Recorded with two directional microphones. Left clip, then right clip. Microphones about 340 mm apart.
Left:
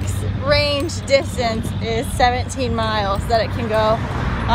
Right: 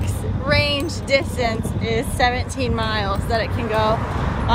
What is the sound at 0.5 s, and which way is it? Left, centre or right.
Speech, centre.